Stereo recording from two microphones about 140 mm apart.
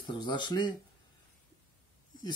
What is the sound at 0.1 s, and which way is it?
Speech, 35° left (ahead or behind).